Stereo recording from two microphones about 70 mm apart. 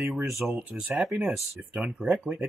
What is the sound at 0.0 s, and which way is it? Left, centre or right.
Speech, right.